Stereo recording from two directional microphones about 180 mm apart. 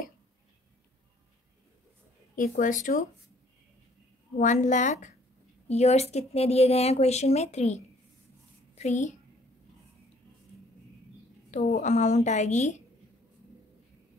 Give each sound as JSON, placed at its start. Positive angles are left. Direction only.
{"t": 2.3, "sound": "speech", "side_deg": 50}
{"t": 4.4, "sound": "a woman's voice", "side_deg": 45}
{"t": 11.5, "sound": "speech", "side_deg": 40}